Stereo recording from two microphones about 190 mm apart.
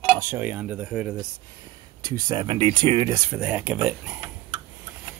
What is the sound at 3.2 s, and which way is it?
Speech, 5° right (ahead or behind).